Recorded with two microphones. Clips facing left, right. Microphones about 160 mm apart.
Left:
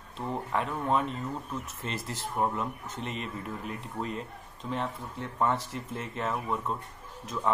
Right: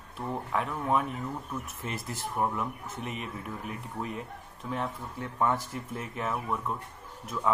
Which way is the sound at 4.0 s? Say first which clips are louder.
Left 1 dB; 25° left (ahead or behind).